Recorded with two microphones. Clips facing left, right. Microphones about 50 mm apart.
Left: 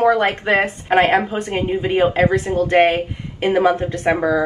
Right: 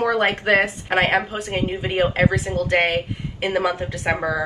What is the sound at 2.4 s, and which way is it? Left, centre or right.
Speech, left.